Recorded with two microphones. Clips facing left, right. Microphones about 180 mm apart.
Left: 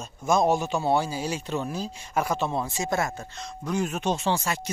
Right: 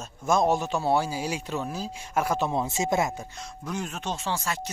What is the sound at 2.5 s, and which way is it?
Speech, 20° right (ahead or behind).